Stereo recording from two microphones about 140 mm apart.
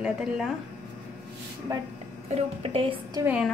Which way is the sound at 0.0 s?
5° right (ahead or behind).